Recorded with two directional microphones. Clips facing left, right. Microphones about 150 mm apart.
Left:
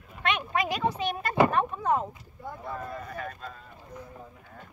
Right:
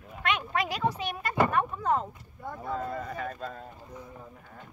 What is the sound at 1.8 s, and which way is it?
Speech, 15° left (ahead or behind).